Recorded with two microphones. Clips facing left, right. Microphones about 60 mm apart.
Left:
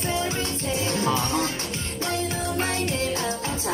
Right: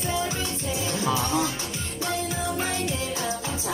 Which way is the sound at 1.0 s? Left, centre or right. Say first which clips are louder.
Even; centre.